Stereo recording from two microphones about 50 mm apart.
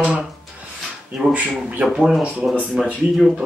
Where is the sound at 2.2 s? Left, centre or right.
Right.